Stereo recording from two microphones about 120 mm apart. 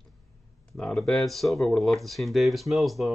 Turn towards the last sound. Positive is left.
turn(degrees=0)  # may be behind; listen again after turning